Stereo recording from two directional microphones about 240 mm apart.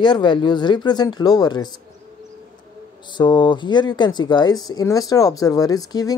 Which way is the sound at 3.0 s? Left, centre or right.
Centre.